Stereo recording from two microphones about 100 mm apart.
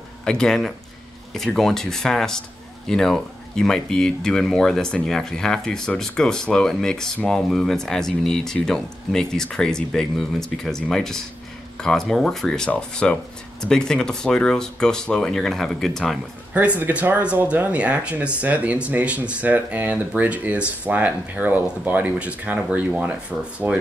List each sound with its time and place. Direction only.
0.2 s speech: 10° left (ahead or behind)
16.5 s speech: 15° right (ahead or behind)